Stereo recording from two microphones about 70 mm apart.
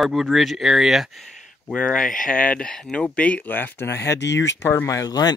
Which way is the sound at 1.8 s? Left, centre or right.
Centre.